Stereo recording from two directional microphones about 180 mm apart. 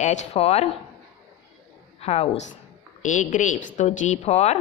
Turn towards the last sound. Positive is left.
turn(degrees=35)  # may be behind; listen again after turning